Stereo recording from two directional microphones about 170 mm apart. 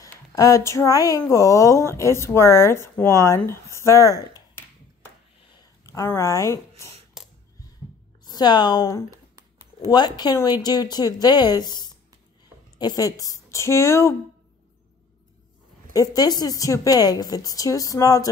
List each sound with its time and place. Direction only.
0.0 s speech: 20° left (ahead or behind)
5.5 s a sound: 20° left (ahead or behind)
8.3 s a woman's voice: 25° left (ahead or behind)
9.1 s a sound: 20° right (ahead or behind)
9.8 s a woman's voice: 25° left (ahead or behind)
15.9 s a woman's voice: 20° left (ahead or behind)